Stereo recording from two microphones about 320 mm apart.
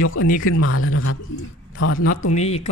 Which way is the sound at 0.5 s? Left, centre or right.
Left.